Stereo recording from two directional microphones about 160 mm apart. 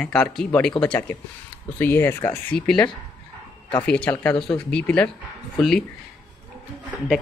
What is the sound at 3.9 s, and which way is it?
Speech, 10° left (ahead or behind).